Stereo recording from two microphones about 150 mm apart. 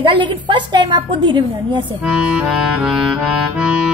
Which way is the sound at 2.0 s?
5° right (ahead or behind).